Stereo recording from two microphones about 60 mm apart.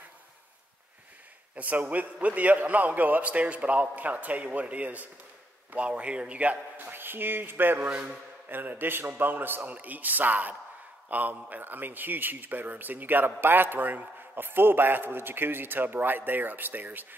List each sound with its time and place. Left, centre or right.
1.5 s a man's voice: right
6.9 s a man's voice: right